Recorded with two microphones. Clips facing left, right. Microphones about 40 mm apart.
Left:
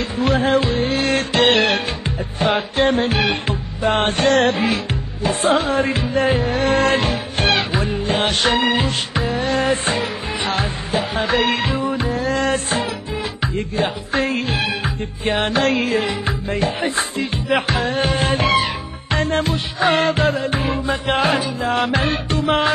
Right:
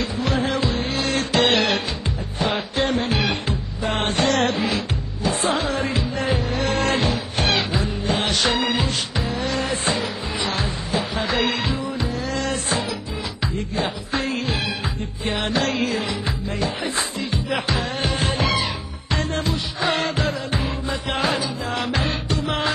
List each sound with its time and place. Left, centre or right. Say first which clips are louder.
0.0 s music: left 5 dB; left